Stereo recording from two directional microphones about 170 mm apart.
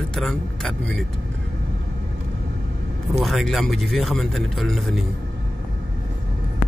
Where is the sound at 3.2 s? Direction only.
Centre (ahead or behind).